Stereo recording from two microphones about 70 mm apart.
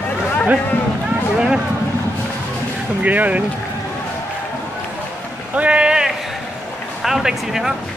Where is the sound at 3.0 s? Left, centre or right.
Right.